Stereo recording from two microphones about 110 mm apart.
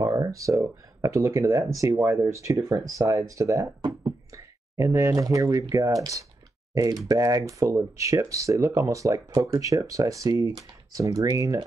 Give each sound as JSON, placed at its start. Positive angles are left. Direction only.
{"t": 0.0, "sound": "speech", "side_deg": -30}